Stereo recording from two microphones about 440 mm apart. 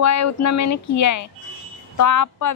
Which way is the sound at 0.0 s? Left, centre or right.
Left.